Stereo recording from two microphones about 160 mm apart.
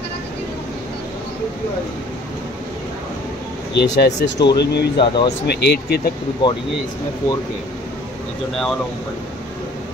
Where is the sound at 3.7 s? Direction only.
90° left.